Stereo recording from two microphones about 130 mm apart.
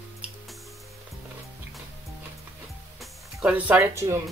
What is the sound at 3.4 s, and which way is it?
Speech, 10° right (ahead or behind).